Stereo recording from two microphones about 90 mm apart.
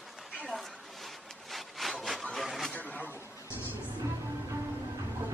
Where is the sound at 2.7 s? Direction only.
15° left (ahead or behind).